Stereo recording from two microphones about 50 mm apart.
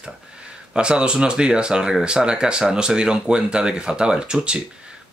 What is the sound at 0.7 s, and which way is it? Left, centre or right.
Speech, centre.